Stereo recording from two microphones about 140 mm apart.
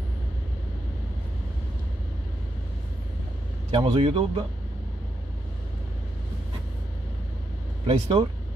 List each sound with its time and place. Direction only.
3.7 s speech: 45° right (ahead or behind)
7.8 s speech: 45° right (ahead or behind)